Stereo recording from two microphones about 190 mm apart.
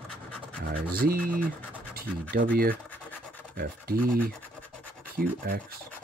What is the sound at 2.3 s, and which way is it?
Speech, 50° right (ahead or behind).